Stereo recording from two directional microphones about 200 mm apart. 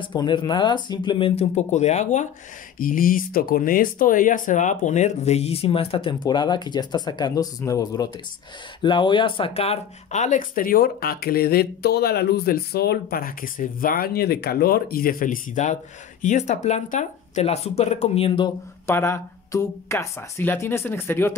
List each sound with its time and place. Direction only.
0.0 s speech: 25° left (ahead or behind)
18.9 s speech: 10° left (ahead or behind)